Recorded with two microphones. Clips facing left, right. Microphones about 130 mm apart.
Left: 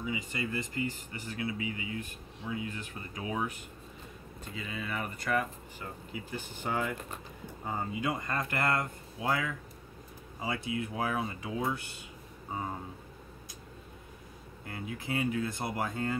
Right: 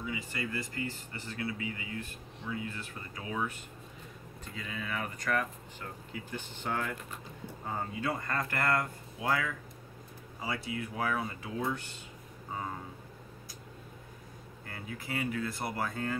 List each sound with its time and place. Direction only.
0.1 s speech: 20° left (ahead or behind)
4.6 s speech: 5° left (ahead or behind)
14.7 s speech: 20° left (ahead or behind)